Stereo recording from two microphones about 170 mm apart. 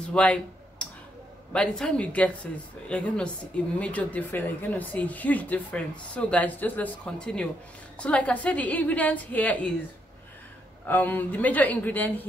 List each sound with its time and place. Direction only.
0.1 s a sound: 5° left (ahead or behind)
1.5 s a woman's voice: 5° left (ahead or behind)
10.9 s speech: 10° left (ahead or behind)